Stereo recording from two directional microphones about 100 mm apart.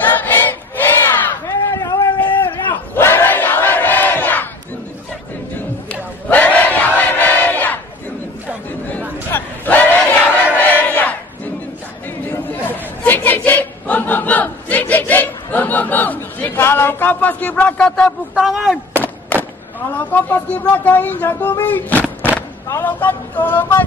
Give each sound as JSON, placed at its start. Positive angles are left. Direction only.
{"t": 0.0, "sound": "battle cry", "side_deg": 20}
{"t": 2.7, "sound": "battle cry", "side_deg": 20}
{"t": 5.9, "sound": "battle cry", "side_deg": 15}
{"t": 9.3, "sound": "battle cry", "side_deg": 20}
{"t": 12.3, "sound": "chatter", "side_deg": 20}
{"t": 18.3, "sound": "speech", "side_deg": 0}
{"t": 20.1, "sound": "speech", "side_deg": 20}
{"t": 22.0, "sound": "vehicle", "side_deg": -10}
{"t": 22.8, "sound": "a sound", "side_deg": 20}